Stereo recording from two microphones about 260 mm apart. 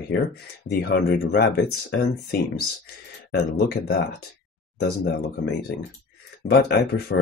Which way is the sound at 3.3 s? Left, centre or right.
Left.